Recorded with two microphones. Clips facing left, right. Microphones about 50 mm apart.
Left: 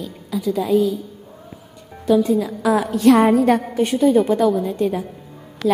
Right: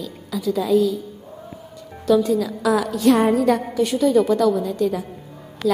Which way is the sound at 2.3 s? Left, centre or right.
Left.